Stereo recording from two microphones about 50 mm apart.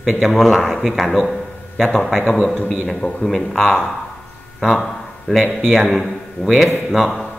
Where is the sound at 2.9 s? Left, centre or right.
Centre.